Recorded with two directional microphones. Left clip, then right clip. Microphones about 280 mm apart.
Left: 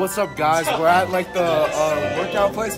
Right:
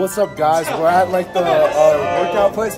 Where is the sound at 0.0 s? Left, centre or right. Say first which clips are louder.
Right 4 dB; centre.